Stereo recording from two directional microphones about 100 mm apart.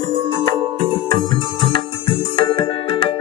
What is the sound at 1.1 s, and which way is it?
Music, 55° left (ahead or behind).